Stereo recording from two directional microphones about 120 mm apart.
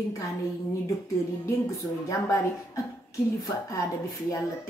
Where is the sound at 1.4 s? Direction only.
25° left (ahead or behind).